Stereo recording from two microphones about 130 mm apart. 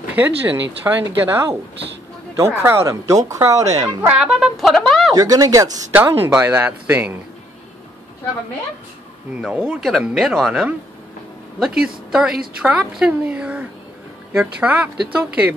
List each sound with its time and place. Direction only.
0.0 s speech: 15° right (ahead or behind)
4.1 s speech: 5° right (ahead or behind)
5.1 s speech: 30° right (ahead or behind)
5.9 s speech: 15° right (ahead or behind)
9.3 s speech: 10° right (ahead or behind)